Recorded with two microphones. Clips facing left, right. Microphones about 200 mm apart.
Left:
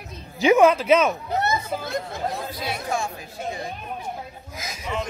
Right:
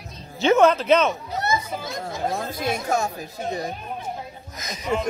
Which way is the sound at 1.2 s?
60° left (ahead or behind).